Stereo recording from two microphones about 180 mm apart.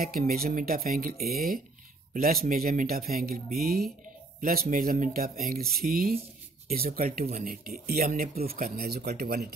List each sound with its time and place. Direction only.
0.0 s speech: 55° right (ahead or behind)